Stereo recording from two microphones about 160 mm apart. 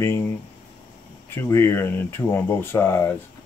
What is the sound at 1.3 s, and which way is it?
Speech, 15° left (ahead or behind).